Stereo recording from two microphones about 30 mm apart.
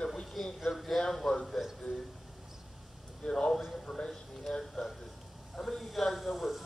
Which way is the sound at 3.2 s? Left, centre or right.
Left.